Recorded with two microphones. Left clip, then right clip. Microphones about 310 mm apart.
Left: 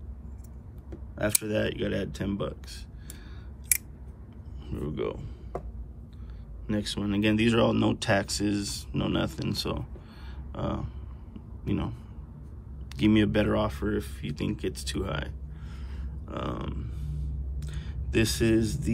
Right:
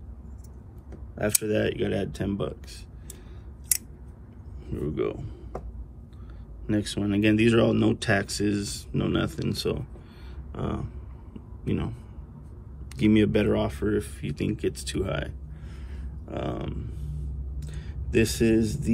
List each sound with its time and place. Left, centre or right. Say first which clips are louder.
1.1 s speech: right 2 dB; centre
4.6 s speech: right 3 dB; centre
6.7 s speech: right 3 dB; centre
12.9 s speech: right 2 dB; centre
16.0 s a sound: right 2 dB; centre
16.9 s a sound: even; centre